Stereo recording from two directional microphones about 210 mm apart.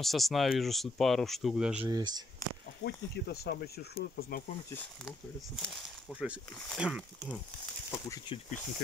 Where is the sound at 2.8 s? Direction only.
50° left (ahead or behind).